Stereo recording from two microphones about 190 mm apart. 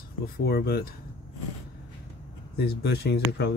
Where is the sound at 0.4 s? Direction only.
55° left (ahead or behind).